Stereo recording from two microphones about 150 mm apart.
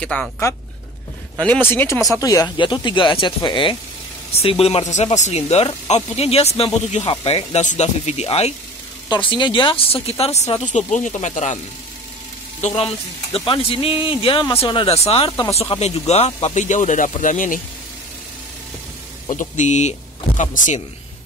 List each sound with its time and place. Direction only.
0.0 s speech: 5° left (ahead or behind)
1.7 s speech: 20° left (ahead or behind); by 8.5 s 45° left (ahead or behind)
9.1 s speech: 30° left (ahead or behind); by 11.6 s 50° left (ahead or behind)
12.6 s speech: 40° left (ahead or behind)
14.4 s speech: 15° left (ahead or behind)
14.7 s speech: 35° left (ahead or behind); by 17.6 s 60° left (ahead or behind)
19.2 s speech: 55° left (ahead or behind)